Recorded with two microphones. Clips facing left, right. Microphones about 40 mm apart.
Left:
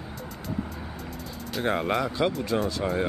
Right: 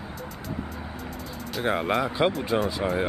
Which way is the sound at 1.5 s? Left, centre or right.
Centre.